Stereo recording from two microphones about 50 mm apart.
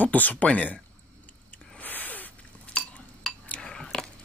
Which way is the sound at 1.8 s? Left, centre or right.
Left.